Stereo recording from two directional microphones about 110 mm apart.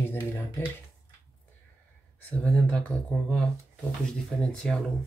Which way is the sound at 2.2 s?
10° left (ahead or behind).